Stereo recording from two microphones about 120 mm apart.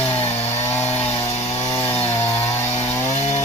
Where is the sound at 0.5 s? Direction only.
20° left (ahead or behind).